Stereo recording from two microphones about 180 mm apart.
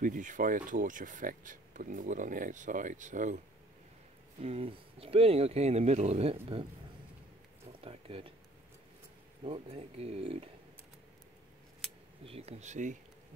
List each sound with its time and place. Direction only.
0.0 s speech: 45° right (ahead or behind)
4.4 s speech: 35° right (ahead or behind)
7.8 s a sound: 30° right (ahead or behind)
9.4 s speech: 35° right (ahead or behind)
12.3 s speech: 35° right (ahead or behind)